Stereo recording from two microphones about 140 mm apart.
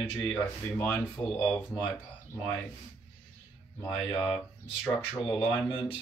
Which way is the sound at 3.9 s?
10° left (ahead or behind).